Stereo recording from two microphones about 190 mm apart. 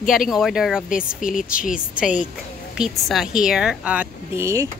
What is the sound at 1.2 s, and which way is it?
Speech, 45° left (ahead or behind).